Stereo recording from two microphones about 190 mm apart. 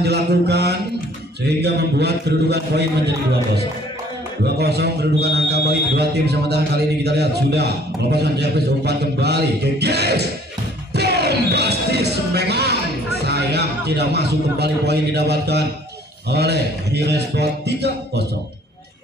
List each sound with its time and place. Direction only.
0.0 s a man's voice: 60° right (ahead or behind)
4.6 s a man's voice: 60° right (ahead or behind)
10.9 s music: 60° right (ahead or behind)
13.2 s a man's voice: 60° right (ahead or behind)